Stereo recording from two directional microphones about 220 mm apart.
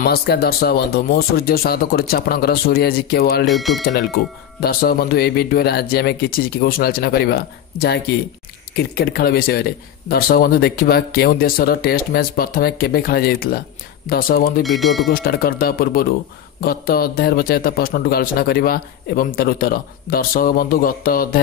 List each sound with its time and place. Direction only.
0.0 s speech: 45° left (ahead or behind)
3.4 s speech: centre (ahead or behind)
3.8 s a man's voice: 45° left (ahead or behind)
14.6 s speech: centre (ahead or behind)
15.1 s a man's voice: 40° left (ahead or behind)